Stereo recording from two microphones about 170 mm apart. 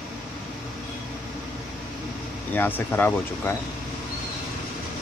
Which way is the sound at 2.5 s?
10° left (ahead or behind).